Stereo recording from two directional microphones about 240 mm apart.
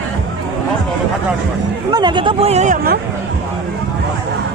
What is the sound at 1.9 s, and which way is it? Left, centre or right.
Speech, centre.